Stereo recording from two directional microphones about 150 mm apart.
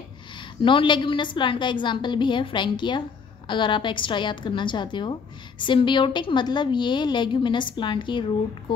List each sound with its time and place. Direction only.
0.4 s a woman's voice: 35° left (ahead or behind)